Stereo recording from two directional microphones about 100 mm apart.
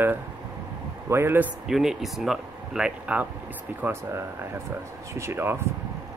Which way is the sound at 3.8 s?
25° right (ahead or behind).